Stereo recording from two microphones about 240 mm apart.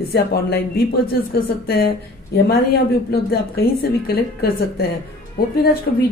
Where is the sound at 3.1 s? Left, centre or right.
Left.